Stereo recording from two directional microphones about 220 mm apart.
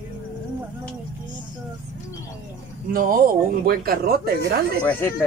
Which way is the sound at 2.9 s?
40° right (ahead or behind).